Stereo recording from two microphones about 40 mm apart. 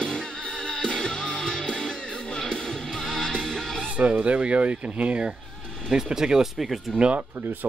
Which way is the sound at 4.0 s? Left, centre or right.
Right.